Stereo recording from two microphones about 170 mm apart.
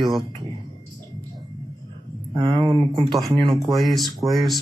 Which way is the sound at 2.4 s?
25° right (ahead or behind).